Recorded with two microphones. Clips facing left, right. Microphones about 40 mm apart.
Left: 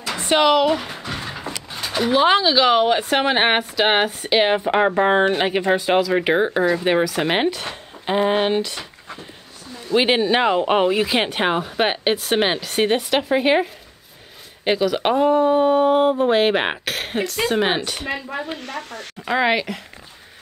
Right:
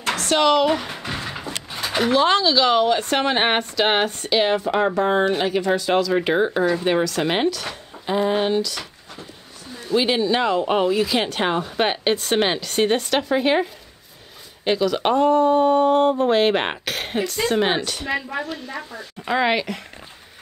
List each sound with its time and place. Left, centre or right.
0.1 s a sound: left
0.7 s speech: centre
1.1 s a sound: centre
2.0 s speech: centre
4.3 s speech: left
18.6 s speech: left
19.2 s speech: centre